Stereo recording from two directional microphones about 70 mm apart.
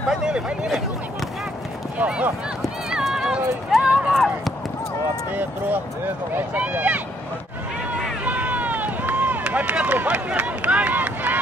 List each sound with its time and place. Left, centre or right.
0.1 s speech: centre
2.0 s speech: centre
2.9 s run: centre
4.1 s speech: centre
5.3 s speech: right
8.3 s run: right